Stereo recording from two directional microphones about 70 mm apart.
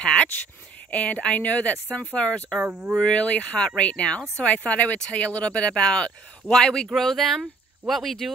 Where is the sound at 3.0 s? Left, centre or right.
Centre.